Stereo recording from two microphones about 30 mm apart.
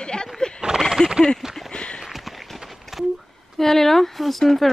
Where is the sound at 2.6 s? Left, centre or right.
Centre.